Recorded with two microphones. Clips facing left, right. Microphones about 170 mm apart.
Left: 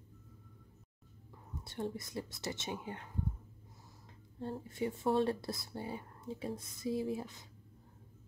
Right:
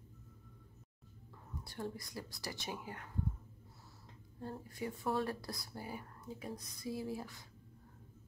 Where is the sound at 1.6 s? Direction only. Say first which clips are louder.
Left 4 dB; 20° left (ahead or behind).